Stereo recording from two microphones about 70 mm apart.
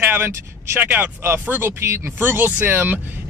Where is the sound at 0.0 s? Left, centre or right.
Right.